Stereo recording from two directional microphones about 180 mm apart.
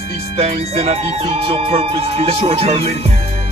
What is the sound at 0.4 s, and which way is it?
Speech, 35° right (ahead or behind).